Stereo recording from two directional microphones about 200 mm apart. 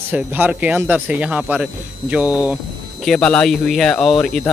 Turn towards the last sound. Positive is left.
turn(degrees=0)  # may be behind; listen again after turning